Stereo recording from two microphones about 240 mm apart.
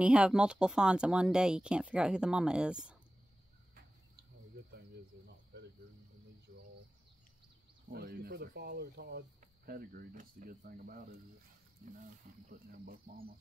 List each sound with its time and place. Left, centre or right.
0.0 s speech: centre
4.7 s cricket: right
7.9 s speech: right
12.4 s speech: right